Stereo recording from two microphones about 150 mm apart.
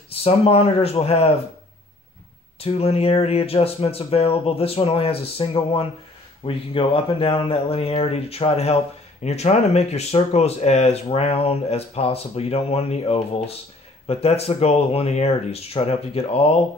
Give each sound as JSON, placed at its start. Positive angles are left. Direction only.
{"t": 0.1, "sound": "speech", "side_deg": 40}
{"t": 2.6, "sound": "speech", "side_deg": 40}